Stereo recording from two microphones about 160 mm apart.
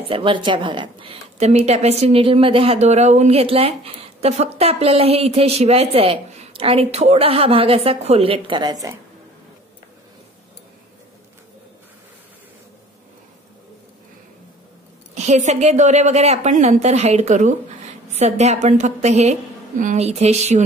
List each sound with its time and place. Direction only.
0.1 s a woman's voice: 30° right (ahead or behind)
15.1 s a woman's voice: 45° right (ahead or behind)